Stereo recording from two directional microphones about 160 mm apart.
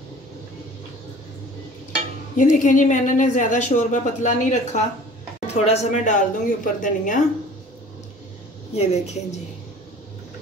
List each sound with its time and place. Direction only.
2.3 s a woman's voice: 55° left (ahead or behind)
8.7 s a woman's voice: 45° left (ahead or behind)